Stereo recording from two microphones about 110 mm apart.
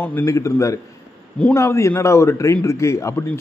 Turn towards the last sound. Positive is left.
turn(degrees=25)  # may be behind; listen again after turning